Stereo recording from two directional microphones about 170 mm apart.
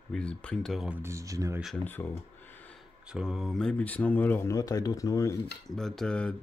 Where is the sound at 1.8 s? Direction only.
10° left (ahead or behind).